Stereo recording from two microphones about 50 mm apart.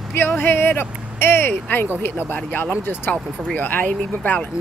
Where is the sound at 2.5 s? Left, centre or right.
Left.